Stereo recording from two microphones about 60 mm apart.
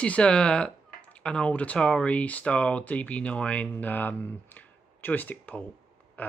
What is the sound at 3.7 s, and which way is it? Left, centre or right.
Speech, left.